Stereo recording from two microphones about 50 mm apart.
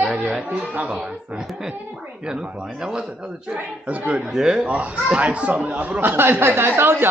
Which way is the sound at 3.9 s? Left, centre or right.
Right.